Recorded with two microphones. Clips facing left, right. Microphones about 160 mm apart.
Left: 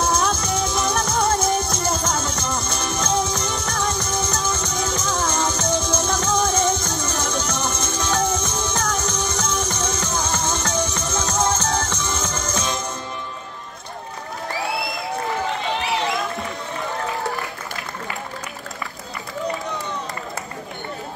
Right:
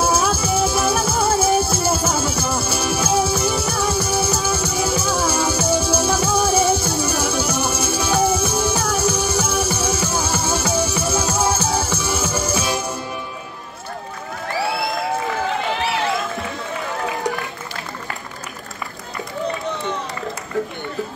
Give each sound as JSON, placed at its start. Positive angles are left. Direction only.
{"t": 0.0, "sound": "music", "side_deg": -5}